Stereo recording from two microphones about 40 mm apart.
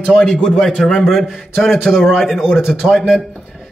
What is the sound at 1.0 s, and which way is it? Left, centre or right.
A man's voice, centre.